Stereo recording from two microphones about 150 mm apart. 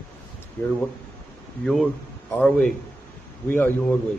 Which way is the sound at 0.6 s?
15° left (ahead or behind).